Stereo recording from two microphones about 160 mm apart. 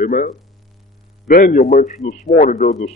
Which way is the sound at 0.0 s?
60° left (ahead or behind).